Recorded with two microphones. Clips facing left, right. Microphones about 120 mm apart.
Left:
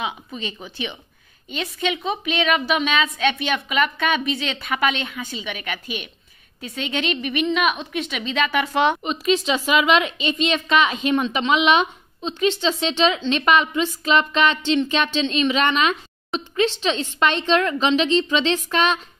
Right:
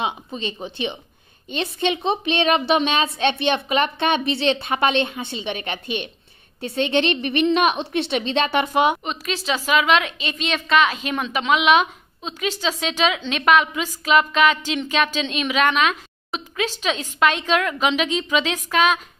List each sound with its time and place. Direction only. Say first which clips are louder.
0.0 s a woman's voice: right 3 dB; 25° right (ahead or behind)
8.6 s speech: right 1 dB; 15° right (ahead or behind)
9.0 s a woman's voice: left 6 dB; centre (ahead or behind)